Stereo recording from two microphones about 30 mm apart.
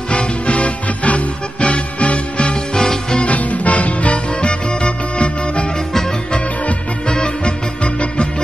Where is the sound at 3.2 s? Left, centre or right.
Left.